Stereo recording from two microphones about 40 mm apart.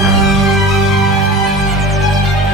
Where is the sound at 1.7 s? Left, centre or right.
Centre.